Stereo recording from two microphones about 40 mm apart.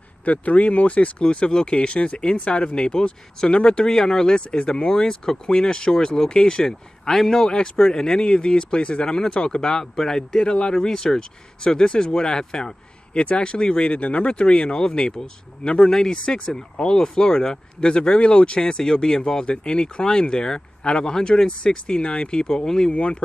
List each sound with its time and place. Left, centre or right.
0.2 s speech: left
1.2 s a man's voice: left